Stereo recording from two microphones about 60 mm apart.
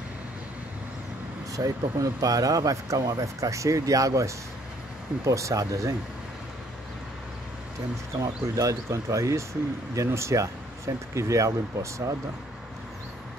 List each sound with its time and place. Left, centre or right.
1.5 s speech: right
8.2 s speech: right